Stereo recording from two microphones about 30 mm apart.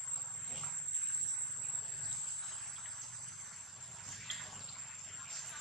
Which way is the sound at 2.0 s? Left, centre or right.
Centre.